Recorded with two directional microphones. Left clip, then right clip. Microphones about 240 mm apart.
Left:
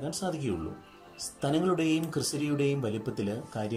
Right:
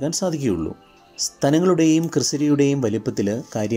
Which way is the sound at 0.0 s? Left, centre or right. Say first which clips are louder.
Right 11 dB; right.